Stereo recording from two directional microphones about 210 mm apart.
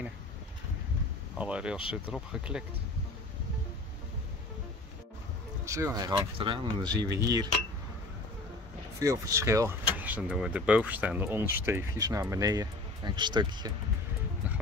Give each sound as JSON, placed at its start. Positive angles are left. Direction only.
{"t": 1.4, "sound": "speech", "side_deg": -5}
{"t": 5.7, "sound": "speech", "side_deg": -15}
{"t": 9.0, "sound": "speech", "side_deg": -15}